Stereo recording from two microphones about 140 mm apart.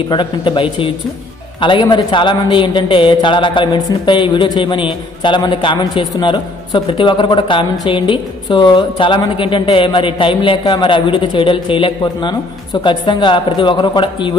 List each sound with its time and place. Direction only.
0.1 s speech: 35° left (ahead or behind)